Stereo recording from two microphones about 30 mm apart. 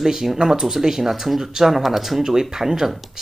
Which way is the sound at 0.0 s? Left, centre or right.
Centre.